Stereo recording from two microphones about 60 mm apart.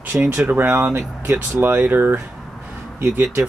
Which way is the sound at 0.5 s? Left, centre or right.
Right.